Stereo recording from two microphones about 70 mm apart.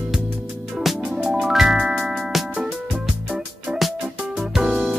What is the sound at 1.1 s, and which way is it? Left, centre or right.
Music, centre.